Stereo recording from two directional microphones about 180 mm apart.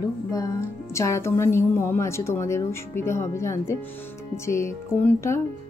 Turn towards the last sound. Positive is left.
turn(degrees=15)  # may be behind; listen again after turning